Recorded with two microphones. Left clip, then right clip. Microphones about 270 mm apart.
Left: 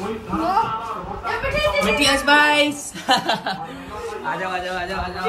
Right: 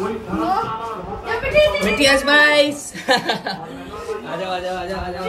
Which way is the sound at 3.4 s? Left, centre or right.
Left.